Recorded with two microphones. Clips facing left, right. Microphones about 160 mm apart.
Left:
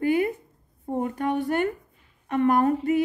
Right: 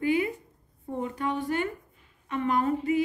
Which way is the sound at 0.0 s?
50° left (ahead or behind).